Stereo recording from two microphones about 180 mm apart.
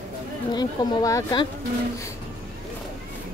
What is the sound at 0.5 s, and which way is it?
Speech, 20° left (ahead or behind).